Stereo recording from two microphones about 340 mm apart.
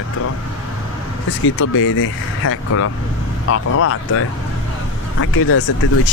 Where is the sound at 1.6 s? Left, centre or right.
Left.